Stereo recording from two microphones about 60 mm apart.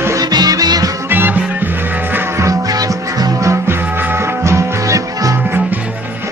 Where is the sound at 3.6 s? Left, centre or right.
Right.